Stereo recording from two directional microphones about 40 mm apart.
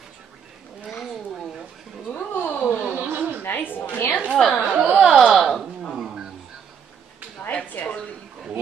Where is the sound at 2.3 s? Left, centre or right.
Left.